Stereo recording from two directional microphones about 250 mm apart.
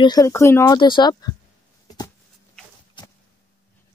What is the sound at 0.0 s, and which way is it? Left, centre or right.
Speech, centre.